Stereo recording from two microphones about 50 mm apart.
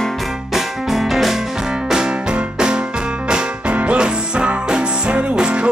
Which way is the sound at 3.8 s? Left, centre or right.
Right.